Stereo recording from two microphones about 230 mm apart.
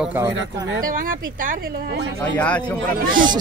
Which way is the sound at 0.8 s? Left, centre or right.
Right.